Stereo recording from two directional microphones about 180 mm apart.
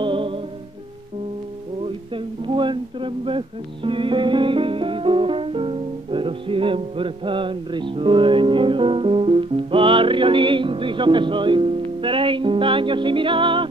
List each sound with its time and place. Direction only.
0.0 s music: 30° right (ahead or behind)
2.4 s music: 25° right (ahead or behind)